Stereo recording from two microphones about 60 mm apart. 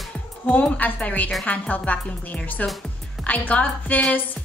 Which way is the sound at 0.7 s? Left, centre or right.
Left.